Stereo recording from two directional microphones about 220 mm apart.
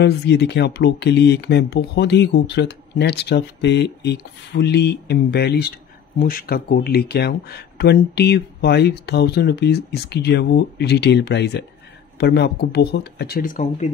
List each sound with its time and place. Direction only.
0.0 s speech: 50° left (ahead or behind)